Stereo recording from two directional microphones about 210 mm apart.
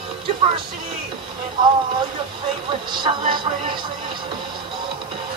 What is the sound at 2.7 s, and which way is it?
Speech, 20° right (ahead or behind).